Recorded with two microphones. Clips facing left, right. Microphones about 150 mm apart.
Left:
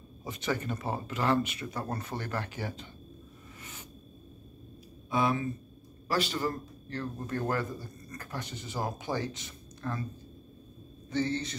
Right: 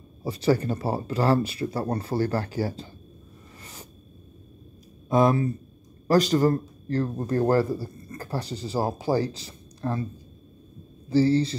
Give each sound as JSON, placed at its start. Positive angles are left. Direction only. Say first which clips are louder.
{"t": 0.2, "sound": "a man's voice", "louder": "right 10 dB", "side_deg": -35}
{"t": 5.1, "sound": "a man's voice", "louder": "right 8 dB", "side_deg": -40}
{"t": 11.1, "sound": "a man's voice", "louder": "right 11 dB", "side_deg": -35}